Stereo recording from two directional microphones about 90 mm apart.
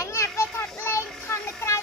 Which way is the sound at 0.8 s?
30° left (ahead or behind).